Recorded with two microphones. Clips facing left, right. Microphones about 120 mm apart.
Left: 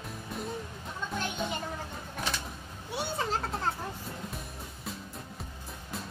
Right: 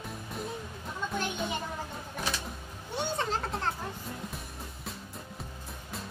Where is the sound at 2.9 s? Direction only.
5° left (ahead or behind).